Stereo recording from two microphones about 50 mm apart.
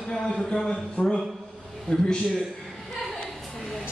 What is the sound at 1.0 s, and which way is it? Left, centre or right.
A man's voice, left.